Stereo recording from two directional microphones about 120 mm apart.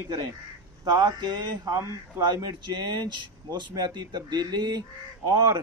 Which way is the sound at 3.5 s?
35° right (ahead or behind).